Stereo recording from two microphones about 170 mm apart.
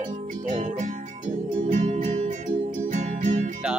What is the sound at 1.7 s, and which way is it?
Music, 50° right (ahead or behind).